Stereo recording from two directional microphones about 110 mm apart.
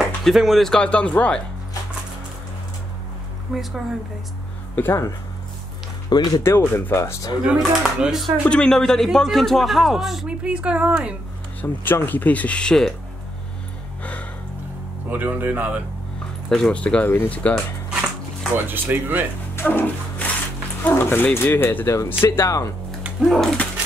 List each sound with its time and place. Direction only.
0.2 s speech: centre (ahead or behind)
3.5 s a man's voice: 5° right (ahead or behind)
4.7 s speech: 20° left (ahead or behind)
6.0 s speech: 40° left (ahead or behind)
6.4 s speech: 20° left (ahead or behind)
7.4 s a man's voice: 5° right (ahead or behind)
11.6 s speech: 20° left (ahead or behind)
15.0 s speech: 15° right (ahead or behind)
16.4 s speech: 5° left (ahead or behind)
18.7 s speech: 15° right (ahead or behind)
19.5 s music: 20° left (ahead or behind)
20.8 s speech: 20° left (ahead or behind)
23.2 s a man's voice: 5° left (ahead or behind)